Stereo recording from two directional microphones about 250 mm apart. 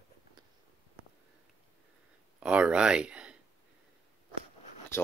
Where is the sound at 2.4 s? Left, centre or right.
Centre.